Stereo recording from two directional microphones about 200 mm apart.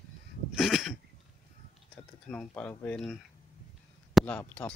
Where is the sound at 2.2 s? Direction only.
5° left (ahead or behind).